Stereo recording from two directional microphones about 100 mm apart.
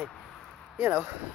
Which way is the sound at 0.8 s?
20° right (ahead or behind).